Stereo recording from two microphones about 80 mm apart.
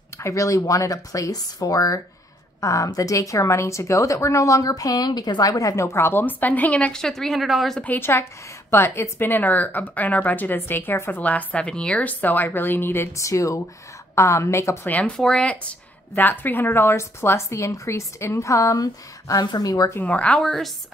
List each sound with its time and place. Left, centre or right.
0.2 s a woman's voice: left; by 7.8 s centre
7.8 s a woman's voice: left
14.9 s speech: centre
16.2 s a woman's voice: left
20.1 s speech: centre
20.4 s a woman's voice: centre